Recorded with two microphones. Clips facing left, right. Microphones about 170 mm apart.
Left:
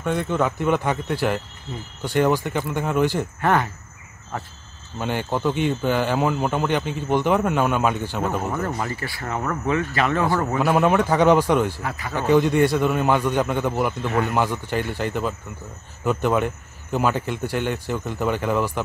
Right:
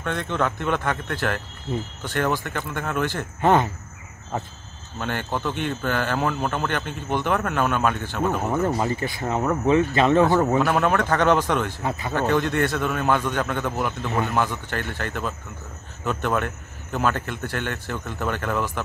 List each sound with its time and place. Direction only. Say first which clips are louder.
0.0 s a man's voice: left 3 dB; 5° left (ahead or behind)
3.3 s speech: right 4 dB; 20° right (ahead or behind)
5.0 s a man's voice: left 4 dB; 15° left (ahead or behind)
8.5 s speech: right 3 dB; 20° right (ahead or behind)
10.6 s a man's voice: left 2 dB; 10° left (ahead or behind)
11.8 s speech: right 2 dB; 25° right (ahead or behind)
12.2 s a man's voice: left 5 dB; 10° left (ahead or behind)